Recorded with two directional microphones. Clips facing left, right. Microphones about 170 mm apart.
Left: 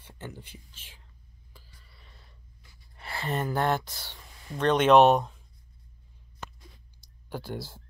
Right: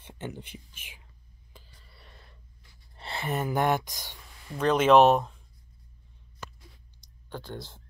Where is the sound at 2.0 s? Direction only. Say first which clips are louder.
Right 5 dB; 70° right (ahead or behind).